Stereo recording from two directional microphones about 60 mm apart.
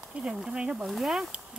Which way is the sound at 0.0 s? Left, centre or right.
Centre.